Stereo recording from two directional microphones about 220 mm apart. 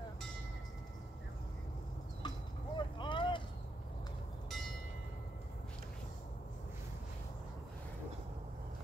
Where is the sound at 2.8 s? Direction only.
20° left (ahead or behind).